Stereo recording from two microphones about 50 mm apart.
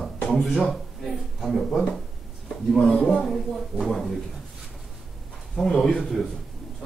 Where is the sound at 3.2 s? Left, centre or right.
Centre.